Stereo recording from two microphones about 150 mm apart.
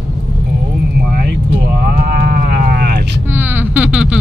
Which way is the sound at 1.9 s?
75° right (ahead or behind).